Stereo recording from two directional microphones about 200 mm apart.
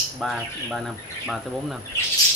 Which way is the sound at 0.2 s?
Centre (ahead or behind).